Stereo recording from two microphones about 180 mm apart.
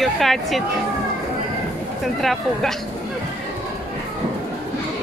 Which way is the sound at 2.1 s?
Centre (ahead or behind).